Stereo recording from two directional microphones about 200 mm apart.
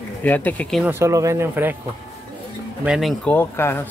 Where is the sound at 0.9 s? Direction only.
15° right (ahead or behind).